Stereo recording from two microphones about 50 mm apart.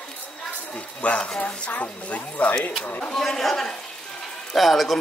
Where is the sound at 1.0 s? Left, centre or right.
Left.